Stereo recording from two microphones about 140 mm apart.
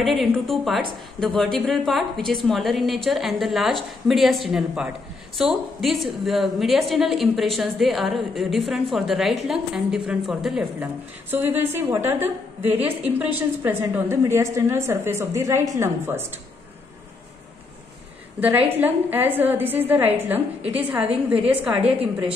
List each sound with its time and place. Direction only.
0.0 s a woman's voice: centre (ahead or behind); by 16.3 s 15° right (ahead or behind)
18.4 s a woman's voice: 15° right (ahead or behind)